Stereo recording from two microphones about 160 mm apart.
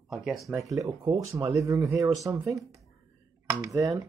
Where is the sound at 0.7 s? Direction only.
20° right (ahead or behind).